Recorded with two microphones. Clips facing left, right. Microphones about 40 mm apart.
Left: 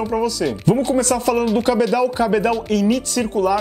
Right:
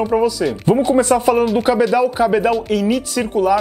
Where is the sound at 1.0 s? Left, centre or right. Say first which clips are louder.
Right 4 dB; right.